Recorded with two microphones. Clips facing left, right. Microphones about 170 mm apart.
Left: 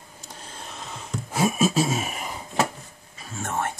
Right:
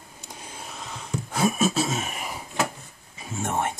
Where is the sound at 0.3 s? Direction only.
10° right (ahead or behind).